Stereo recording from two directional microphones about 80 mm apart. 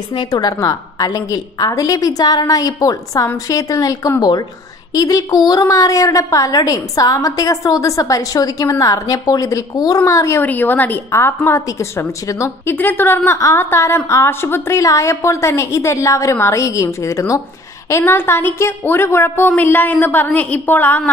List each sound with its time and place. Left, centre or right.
0.3 s a woman's voice: left
4.2 s speech: left
4.9 s a woman's voice: left
10.4 s a woman's voice: left